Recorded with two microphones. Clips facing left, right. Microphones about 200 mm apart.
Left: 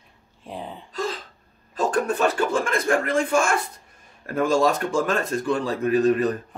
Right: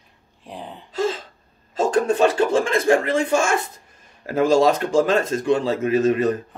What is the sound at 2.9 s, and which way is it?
Speech, 25° right (ahead or behind).